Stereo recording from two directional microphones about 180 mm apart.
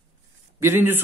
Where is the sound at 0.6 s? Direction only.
10° right (ahead or behind).